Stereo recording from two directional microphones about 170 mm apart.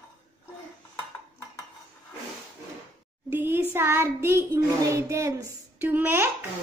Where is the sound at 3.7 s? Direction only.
15° right (ahead or behind).